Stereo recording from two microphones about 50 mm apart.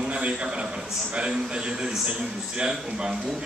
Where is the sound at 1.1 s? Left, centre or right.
Centre.